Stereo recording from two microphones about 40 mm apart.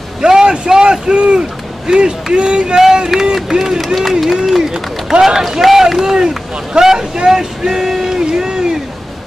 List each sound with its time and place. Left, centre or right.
0.3 s a man's voice: centre
4.3 s speech: centre